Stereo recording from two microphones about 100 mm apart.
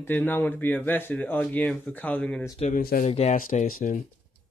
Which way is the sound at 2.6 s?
90° left.